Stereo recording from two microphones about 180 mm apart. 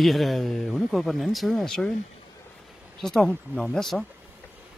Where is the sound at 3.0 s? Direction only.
Centre (ahead or behind).